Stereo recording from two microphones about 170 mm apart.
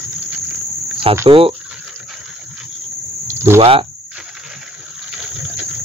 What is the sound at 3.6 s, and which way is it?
Speech, 35° right (ahead or behind).